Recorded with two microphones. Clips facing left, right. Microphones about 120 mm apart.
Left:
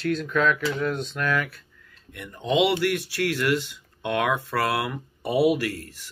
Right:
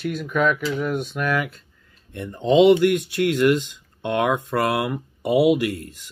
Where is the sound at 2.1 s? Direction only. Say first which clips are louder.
Right 6 dB; 25° right (ahead or behind).